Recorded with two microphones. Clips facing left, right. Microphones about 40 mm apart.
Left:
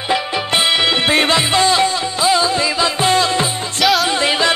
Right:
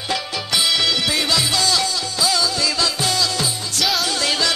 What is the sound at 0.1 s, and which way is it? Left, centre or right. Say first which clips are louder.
Music: left 6 dB; left.